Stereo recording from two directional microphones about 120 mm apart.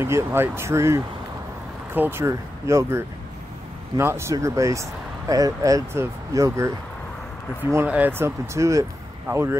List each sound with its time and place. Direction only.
0.0 s speech: 20° right (ahead or behind)
7.7 s speech: 15° right (ahead or behind)